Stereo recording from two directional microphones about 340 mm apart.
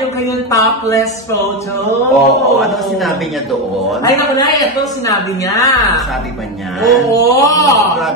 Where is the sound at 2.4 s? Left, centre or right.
Centre.